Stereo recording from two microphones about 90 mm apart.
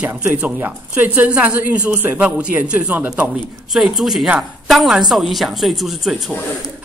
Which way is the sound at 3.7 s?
5° right (ahead or behind).